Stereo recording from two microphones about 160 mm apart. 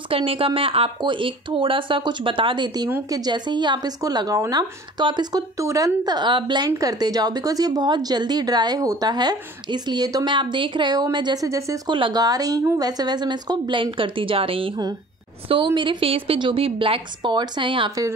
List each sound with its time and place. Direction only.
0.1 s a woman's voice: 35° right (ahead or behind)